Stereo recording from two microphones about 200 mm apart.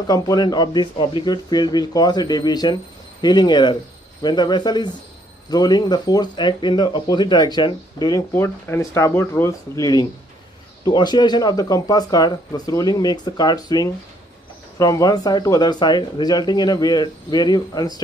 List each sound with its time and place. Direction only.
0.0 s speech: 20° left (ahead or behind)
8.3 s speech: 10° left (ahead or behind)